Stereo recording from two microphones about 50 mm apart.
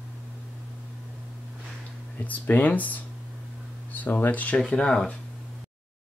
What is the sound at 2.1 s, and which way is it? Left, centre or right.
Speech, left.